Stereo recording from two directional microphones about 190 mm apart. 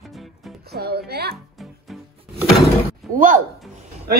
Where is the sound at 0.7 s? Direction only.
55° right (ahead or behind).